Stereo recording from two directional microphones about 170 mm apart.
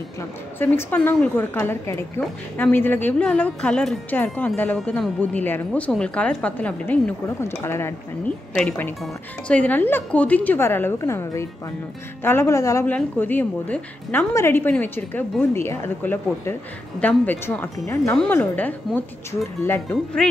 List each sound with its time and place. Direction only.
0.6 s a woman's voice: 10° left (ahead or behind)